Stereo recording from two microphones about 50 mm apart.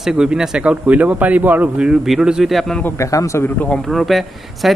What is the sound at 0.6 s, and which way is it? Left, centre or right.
Speech, right.